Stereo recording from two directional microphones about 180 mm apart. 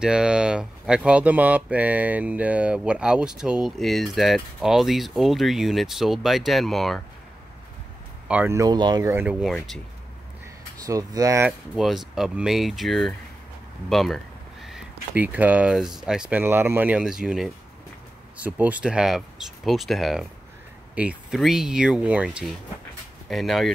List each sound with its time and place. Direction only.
0.0 s speech: 5° right (ahead or behind)
8.3 s speech: 10° right (ahead or behind)
9.1 s speech: 5° right (ahead or behind)
10.9 s speech: 20° right (ahead or behind)
11.7 s speech: centre (ahead or behind)